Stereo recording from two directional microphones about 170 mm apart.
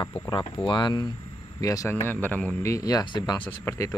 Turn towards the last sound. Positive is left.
turn(degrees=15)  # may be behind; listen again after turning